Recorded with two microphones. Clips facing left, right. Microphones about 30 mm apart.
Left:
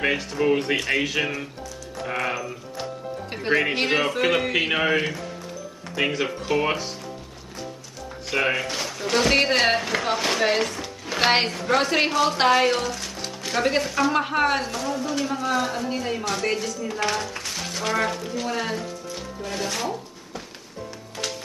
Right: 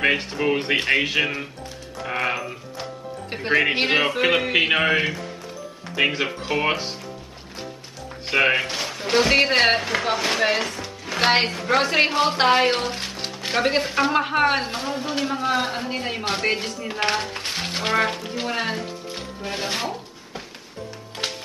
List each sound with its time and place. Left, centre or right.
0.4 s a man's voice: right
2.8 s music: centre
3.6 s a man's voice: right
8.3 s a man's voice: right
9.2 s speech: centre
9.6 s a man's voice: right
9.8 s speech: centre
12.1 s a man's voice: right
14.1 s a man's voice: centre
14.5 s a man's voice: right
21.2 s music: right